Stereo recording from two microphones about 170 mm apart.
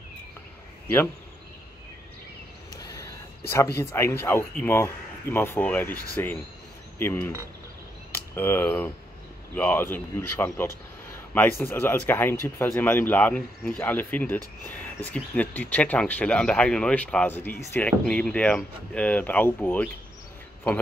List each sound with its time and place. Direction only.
2.8 s a sound: 20° left (ahead or behind)
3.7 s speech: 15° left (ahead or behind)
8.4 s speech: 10° left (ahead or behind)